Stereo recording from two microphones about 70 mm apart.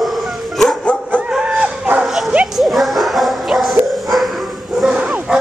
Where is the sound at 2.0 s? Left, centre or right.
Centre.